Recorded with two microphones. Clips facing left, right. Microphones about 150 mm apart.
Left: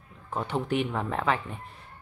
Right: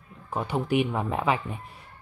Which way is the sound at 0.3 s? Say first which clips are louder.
Right 2 dB; 10° right (ahead or behind).